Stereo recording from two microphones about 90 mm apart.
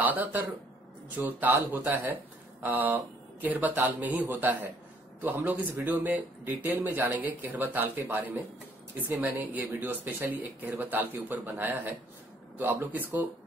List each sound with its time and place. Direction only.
0.0 s a man's voice: 20° right (ahead or behind)